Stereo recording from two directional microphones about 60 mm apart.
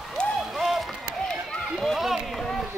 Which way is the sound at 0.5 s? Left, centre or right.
Centre.